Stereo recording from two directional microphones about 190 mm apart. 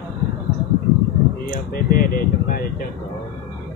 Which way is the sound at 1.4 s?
50° left (ahead or behind).